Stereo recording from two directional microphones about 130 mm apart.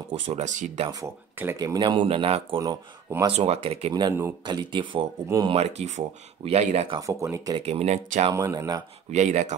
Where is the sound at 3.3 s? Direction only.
55° right (ahead or behind).